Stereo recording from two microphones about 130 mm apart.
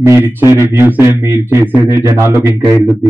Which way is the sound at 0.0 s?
20° right (ahead or behind).